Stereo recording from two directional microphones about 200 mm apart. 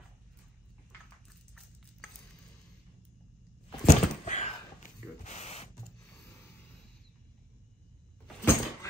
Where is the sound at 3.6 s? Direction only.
35° left (ahead or behind).